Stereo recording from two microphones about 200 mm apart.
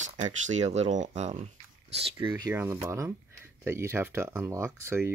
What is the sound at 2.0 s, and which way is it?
Speech, 20° right (ahead or behind).